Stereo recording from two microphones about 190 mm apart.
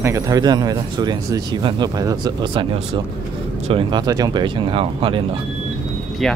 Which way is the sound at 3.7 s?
25° right (ahead or behind).